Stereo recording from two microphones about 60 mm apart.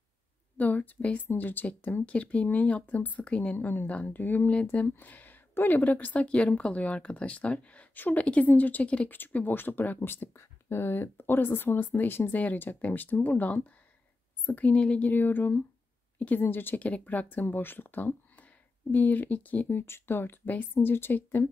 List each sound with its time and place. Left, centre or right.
0.6 s speech: left
3.5 s speech: left
9.1 s speech: left
10.0 s speech: left
15.0 s speech: left
19.8 s speech: left